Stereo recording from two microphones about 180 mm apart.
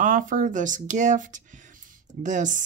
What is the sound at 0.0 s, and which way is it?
Speech, 50° right (ahead or behind).